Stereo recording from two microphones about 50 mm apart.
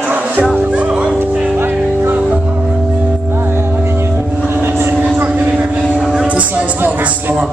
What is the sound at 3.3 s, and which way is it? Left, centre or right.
Music, right.